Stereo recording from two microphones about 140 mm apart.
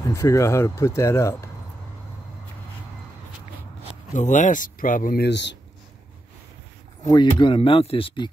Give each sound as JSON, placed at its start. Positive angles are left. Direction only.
{"t": 0.1, "sound": "speech", "side_deg": 20}
{"t": 4.1, "sound": "speech", "side_deg": 60}
{"t": 7.1, "sound": "speech", "side_deg": 30}